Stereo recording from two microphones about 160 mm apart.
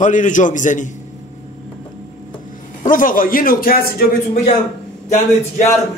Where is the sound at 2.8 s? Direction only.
60° left (ahead or behind).